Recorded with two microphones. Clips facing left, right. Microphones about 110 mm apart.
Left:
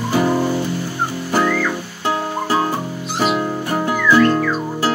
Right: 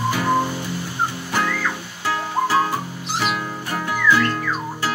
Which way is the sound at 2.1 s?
25° left (ahead or behind).